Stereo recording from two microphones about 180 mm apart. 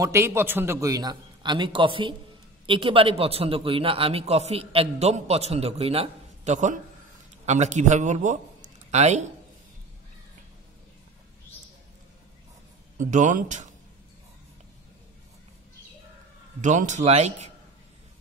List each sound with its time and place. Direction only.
0.0 s a man's voice: 15° right (ahead or behind); by 9.2 s 40° right (ahead or behind)
12.9 s speech: 45° right (ahead or behind)
16.6 s a man's voice: 40° right (ahead or behind)